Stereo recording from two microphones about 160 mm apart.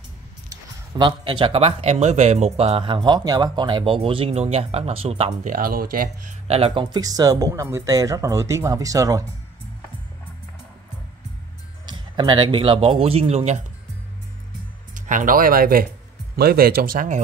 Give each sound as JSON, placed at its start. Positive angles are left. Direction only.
{"t": 0.5, "sound": "speech", "side_deg": -25}
{"t": 5.4, "sound": "speech", "side_deg": -60}
{"t": 6.4, "sound": "speech", "side_deg": -40}
{"t": 11.8, "sound": "a man's voice", "side_deg": -30}
{"t": 15.0, "sound": "speech", "side_deg": -55}